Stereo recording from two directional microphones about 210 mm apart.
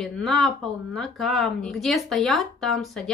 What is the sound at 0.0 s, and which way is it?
A woman's voice, centre (ahead or behind).